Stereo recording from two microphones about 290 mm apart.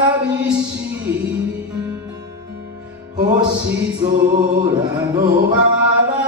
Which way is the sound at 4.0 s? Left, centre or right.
Centre.